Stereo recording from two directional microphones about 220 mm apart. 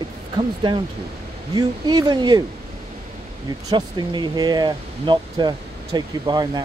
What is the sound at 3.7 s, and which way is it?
Speech, 20° right (ahead or behind).